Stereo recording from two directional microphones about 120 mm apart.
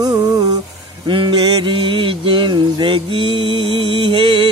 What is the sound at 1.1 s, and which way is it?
Mantra, 40° right (ahead or behind).